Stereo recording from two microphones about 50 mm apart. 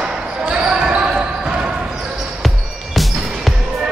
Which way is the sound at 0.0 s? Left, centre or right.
Centre.